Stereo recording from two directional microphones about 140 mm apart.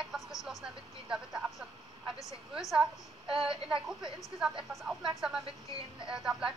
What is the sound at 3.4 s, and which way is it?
Speech, 35° right (ahead or behind).